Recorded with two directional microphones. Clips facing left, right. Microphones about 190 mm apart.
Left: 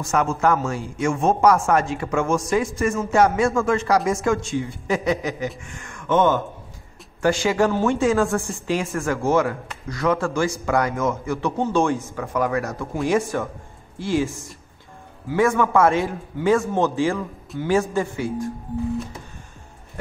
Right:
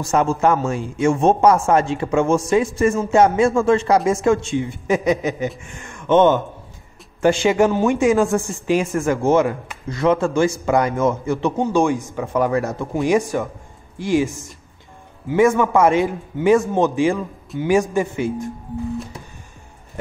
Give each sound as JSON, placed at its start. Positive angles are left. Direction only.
{"t": 0.0, "sound": "speech", "side_deg": -30}
{"t": 12.3, "sound": "speech", "side_deg": -30}